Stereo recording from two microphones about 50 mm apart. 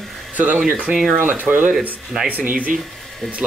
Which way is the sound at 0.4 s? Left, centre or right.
Right.